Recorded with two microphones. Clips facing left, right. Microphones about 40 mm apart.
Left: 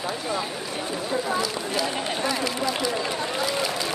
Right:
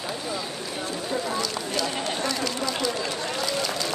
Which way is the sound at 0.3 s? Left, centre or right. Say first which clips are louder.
Left 3 dB; centre.